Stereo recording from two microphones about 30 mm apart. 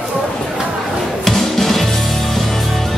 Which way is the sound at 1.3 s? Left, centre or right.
Centre.